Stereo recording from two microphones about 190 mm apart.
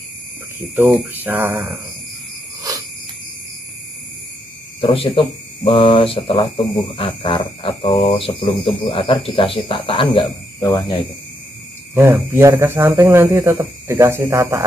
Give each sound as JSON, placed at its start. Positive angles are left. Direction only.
{"t": 0.9, "sound": "speech", "side_deg": -10}
{"t": 4.8, "sound": "speech", "side_deg": 30}
{"t": 11.9, "sound": "speech", "side_deg": -15}